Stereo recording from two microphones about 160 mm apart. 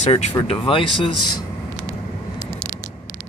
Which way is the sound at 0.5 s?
35° left (ahead or behind).